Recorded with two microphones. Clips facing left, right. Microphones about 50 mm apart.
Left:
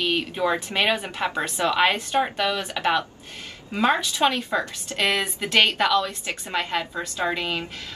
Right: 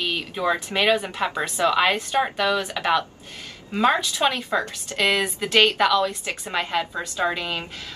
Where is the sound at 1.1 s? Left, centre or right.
Centre.